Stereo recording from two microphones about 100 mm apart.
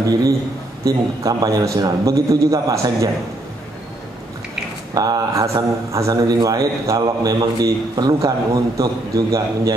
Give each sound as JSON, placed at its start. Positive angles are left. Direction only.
{"t": 0.8, "sound": "a man's voice", "side_deg": -30}
{"t": 4.9, "sound": "a man's voice", "side_deg": -40}